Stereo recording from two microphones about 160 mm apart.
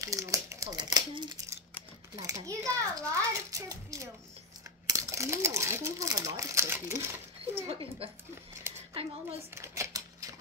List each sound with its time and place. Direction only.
0.0 s crumpling: 20° right (ahead or behind)
2.1 s children playing: 20° right (ahead or behind)
4.8 s speech: 20° right (ahead or behind)
7.5 s a woman's voice: 35° right (ahead or behind)
9.5 s a sound: 15° right (ahead or behind)